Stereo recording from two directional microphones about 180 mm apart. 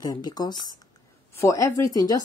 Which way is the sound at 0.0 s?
20° left (ahead or behind).